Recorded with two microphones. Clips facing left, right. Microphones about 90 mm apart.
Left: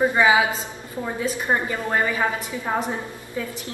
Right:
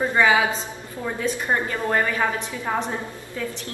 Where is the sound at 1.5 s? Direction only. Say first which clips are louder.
Left 1 dB; 15° left (ahead or behind).